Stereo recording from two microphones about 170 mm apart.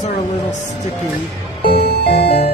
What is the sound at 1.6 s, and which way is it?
Music, 65° left (ahead or behind).